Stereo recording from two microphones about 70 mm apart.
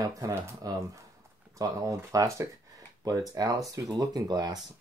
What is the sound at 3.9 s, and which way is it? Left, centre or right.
Speech, right.